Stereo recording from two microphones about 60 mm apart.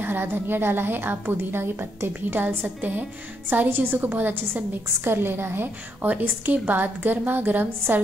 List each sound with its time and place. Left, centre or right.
0.0 s a woman's voice: right
6.0 s a woman's voice: right